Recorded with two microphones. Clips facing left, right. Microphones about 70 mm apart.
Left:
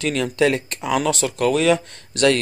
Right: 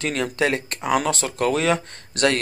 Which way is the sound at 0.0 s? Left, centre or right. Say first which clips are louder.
Left 3 dB; right.